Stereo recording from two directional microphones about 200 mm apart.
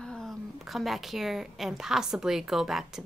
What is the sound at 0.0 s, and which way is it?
Speech, 5° left (ahead or behind).